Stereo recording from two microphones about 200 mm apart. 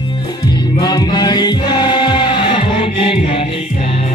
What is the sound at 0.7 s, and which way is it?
Music, 20° left (ahead or behind).